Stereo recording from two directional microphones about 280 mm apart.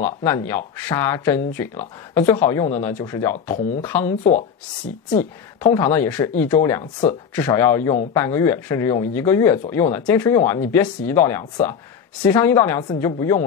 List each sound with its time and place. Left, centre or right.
0.0 s speech: centre
4.2 s speech: left
5.1 s speech: centre